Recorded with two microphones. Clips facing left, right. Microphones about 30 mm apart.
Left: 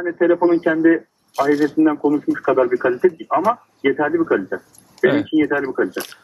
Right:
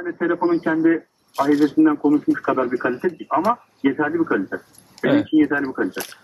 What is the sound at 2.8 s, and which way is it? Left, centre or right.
Speech, centre.